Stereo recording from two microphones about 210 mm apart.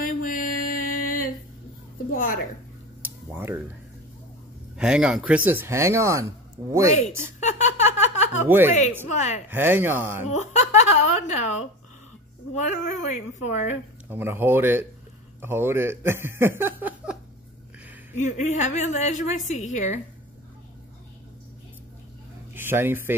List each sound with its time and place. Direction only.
0.0 s music: 40° left (ahead or behind)
2.0 s a woman's voice: 40° left (ahead or behind)
3.0 s a sound: 10° right (ahead or behind)
4.7 s speech: 5° right (ahead or behind)
7.3 s a sound: 35° left (ahead or behind)
8.5 s speech: 10° right (ahead or behind)
9.1 s a woman's voice: 35° left (ahead or behind)
9.5 s speech: 10° right (ahead or behind)
10.3 s a woman's voice: 35° left (ahead or behind)
12.5 s a woman's voice: 35° left (ahead or behind)
14.0 s speech: 10° right (ahead or behind)
18.1 s a woman's voice: 35° left (ahead or behind)
22.5 s speech: 10° right (ahead or behind)